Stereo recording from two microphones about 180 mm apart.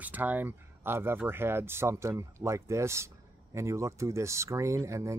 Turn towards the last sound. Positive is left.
turn(degrees=-15)  # may be behind; listen again after turning